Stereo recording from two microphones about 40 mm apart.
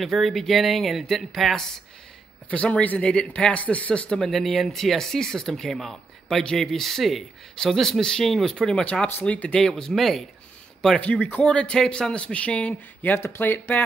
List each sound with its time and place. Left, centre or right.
0.0 s speech: centre
2.5 s speech: left
3.1 s speech: left
4.2 s speech: centre
8.5 s speech: centre
9.0 s speech: left
9.6 s speech: centre
9.9 s speech: centre
11.0 s speech: left
11.4 s speech: left
13.1 s speech: left